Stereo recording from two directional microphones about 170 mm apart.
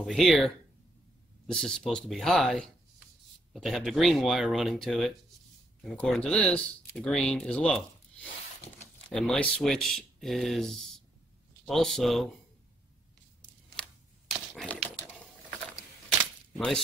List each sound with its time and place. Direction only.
0.0 s speech: centre (ahead or behind)
1.5 s speech: 5° left (ahead or behind)
13.7 s a sound: centre (ahead or behind)
16.5 s speech: centre (ahead or behind)